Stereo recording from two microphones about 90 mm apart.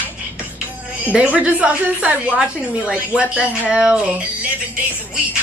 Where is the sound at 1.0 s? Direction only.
15° right (ahead or behind).